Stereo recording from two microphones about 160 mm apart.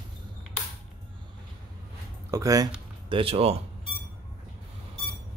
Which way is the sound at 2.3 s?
20° right (ahead or behind).